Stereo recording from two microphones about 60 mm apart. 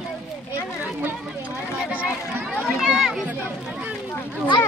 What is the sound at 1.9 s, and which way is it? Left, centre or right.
Speech, right.